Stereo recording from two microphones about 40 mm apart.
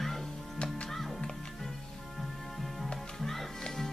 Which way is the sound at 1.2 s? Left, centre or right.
Centre.